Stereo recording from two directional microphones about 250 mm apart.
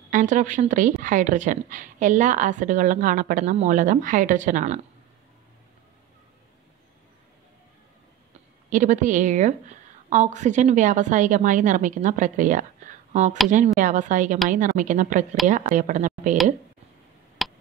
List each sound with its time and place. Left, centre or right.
0.1 s a woman's voice: right
8.6 s a woman's voice: right
17.4 s a sound: centre